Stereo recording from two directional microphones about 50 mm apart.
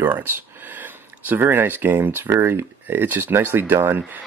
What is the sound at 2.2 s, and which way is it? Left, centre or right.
Speech, right.